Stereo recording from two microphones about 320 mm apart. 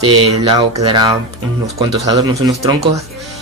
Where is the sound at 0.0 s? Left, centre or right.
Centre.